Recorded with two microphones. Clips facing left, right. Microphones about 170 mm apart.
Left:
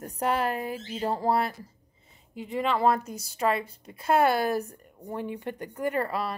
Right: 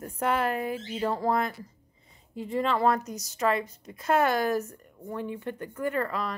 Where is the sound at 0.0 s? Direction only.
40° left (ahead or behind).